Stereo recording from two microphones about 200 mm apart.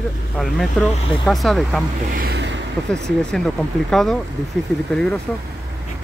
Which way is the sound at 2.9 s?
5° left (ahead or behind).